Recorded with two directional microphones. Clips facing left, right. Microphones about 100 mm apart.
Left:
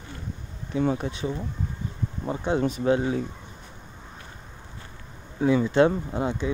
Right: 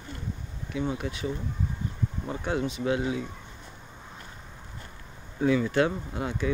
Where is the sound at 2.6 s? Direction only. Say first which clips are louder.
Left 6 dB; 40° left (ahead or behind).